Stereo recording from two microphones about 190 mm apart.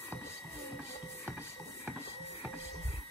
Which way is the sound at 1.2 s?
10° right (ahead or behind).